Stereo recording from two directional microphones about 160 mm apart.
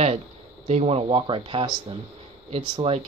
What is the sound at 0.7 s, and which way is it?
Speech, 40° right (ahead or behind).